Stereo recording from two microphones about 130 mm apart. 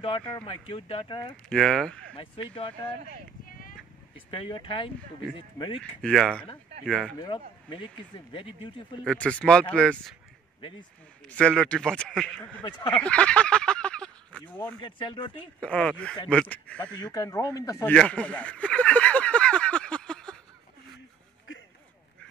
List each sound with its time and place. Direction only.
0.0 s speech: 40° left (ahead or behind)
1.3 s speech: 5° left (ahead or behind)
2.1 s speech: 45° left (ahead or behind)
3.4 s a sound: 90° left
4.3 s speech: 40° left (ahead or behind)
5.8 s speech: 5° left (ahead or behind)
7.2 s speech: 40° left (ahead or behind)
9.0 s speech: 10° left (ahead or behind)
11.2 s speech: 5° left (ahead or behind)
13.0 s fowl: 10° left (ahead or behind)
14.8 s speech: 40° left (ahead or behind)
15.6 s speech: 5° left (ahead or behind)
16.8 s speech: 35° left (ahead or behind)
17.8 s a sound: 10° left (ahead or behind)